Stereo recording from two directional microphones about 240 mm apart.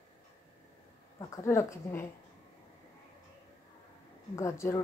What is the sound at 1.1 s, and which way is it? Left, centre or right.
Speech, centre.